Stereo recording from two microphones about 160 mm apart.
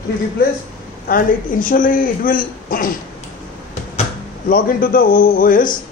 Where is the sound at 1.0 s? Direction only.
60° left (ahead or behind).